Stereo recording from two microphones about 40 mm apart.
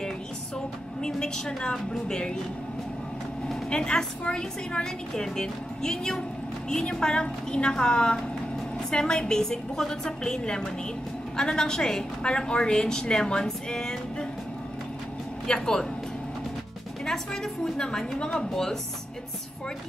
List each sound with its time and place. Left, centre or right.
1.0 s a woman's voice: centre
3.7 s a woman's voice: left
13.0 s music: left
15.4 s speech: centre
17.0 s a woman's voice: centre